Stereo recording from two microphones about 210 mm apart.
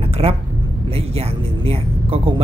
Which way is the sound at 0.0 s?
25° right (ahead or behind).